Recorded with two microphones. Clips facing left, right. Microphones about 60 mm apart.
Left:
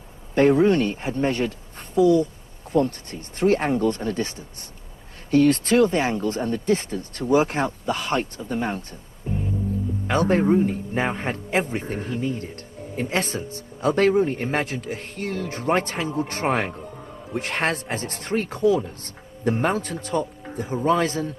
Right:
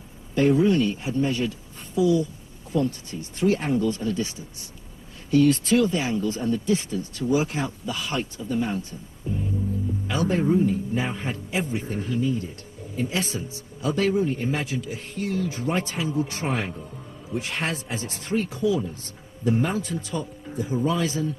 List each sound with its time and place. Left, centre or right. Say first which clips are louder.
0.3 s speech: left 3 dB; left
10.0 s speech: left 4 dB; left